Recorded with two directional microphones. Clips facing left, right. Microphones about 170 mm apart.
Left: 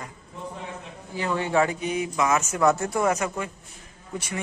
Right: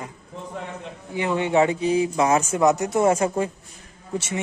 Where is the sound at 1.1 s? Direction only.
20° right (ahead or behind).